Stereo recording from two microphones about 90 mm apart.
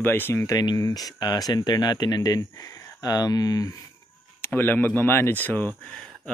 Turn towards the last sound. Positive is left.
turn(degrees=20)  # may be behind; listen again after turning